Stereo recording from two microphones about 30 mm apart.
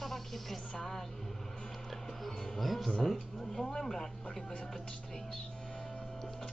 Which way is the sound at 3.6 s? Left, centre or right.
Centre.